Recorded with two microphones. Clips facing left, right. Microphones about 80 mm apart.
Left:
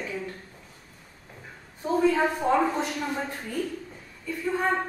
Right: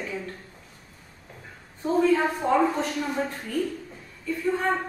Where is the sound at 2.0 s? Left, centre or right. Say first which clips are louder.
Even; centre.